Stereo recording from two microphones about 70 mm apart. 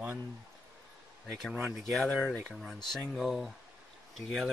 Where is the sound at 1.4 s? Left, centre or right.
Centre.